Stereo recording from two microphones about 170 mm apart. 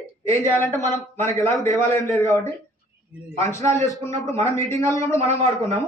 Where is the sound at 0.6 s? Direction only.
20° right (ahead or behind).